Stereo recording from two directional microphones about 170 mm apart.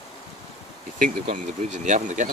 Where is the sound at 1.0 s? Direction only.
45° right (ahead or behind).